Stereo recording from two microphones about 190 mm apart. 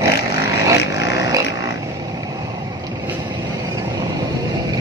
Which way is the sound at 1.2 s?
15° right (ahead or behind).